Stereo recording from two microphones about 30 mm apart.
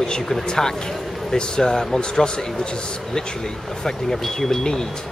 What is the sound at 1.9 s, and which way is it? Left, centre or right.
Speech, left.